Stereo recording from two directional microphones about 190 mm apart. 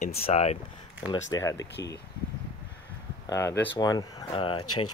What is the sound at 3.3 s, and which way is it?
Speech, 15° left (ahead or behind).